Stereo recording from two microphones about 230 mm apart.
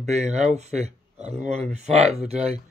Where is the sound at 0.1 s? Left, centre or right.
Right.